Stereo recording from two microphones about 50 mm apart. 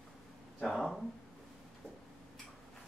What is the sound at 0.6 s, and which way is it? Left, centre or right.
Speech, centre.